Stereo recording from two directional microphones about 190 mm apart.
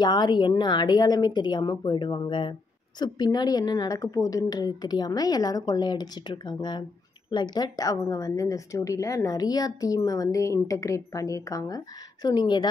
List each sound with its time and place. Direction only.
0.0 s a woman's voice: 20° left (ahead or behind)